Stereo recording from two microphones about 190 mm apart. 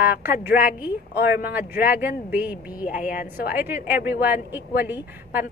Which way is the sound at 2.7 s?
45° left (ahead or behind).